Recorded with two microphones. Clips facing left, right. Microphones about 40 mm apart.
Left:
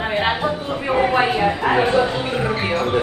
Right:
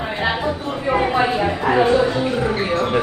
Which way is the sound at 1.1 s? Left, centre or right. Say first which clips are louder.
Left 1 dB; left.